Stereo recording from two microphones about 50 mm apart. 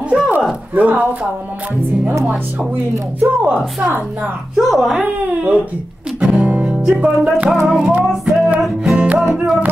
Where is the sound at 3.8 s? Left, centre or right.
Right.